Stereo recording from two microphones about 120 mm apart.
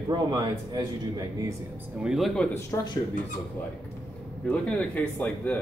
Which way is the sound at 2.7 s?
25° left (ahead or behind).